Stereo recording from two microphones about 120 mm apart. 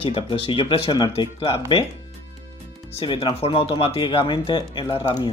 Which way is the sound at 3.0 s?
45° left (ahead or behind).